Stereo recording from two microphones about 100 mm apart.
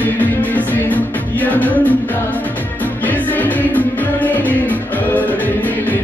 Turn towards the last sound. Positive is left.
turn(degrees=15)  # may be behind; listen again after turning